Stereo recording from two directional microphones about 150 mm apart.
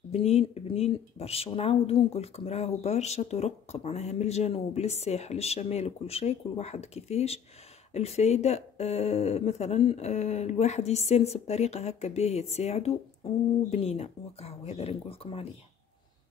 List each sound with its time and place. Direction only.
0.1 s speech: 45° left (ahead or behind)